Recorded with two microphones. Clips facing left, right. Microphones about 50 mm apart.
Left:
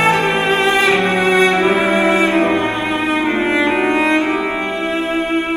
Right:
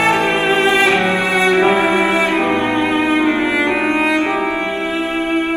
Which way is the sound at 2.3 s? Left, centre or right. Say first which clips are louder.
Left 2 dB; right.